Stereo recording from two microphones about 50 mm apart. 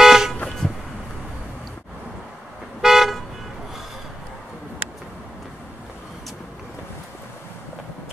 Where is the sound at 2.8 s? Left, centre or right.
Centre.